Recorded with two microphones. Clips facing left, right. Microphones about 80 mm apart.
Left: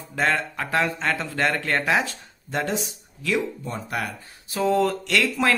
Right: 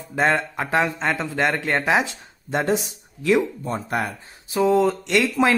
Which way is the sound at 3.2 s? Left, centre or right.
Right.